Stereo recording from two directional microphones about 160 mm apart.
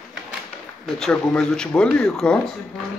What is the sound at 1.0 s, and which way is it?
Speech, 5° left (ahead or behind).